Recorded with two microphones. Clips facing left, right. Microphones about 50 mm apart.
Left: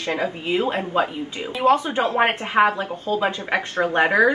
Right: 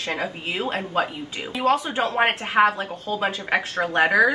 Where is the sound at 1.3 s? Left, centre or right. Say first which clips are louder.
Left 3 dB; centre.